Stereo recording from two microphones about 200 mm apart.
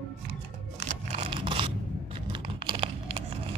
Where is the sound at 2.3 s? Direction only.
25° right (ahead or behind).